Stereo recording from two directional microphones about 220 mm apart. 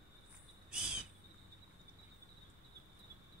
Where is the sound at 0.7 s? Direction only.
5° right (ahead or behind).